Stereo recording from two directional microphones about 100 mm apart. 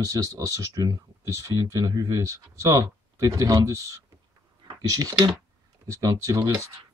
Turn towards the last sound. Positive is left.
turn(degrees=-35)  # may be behind; listen again after turning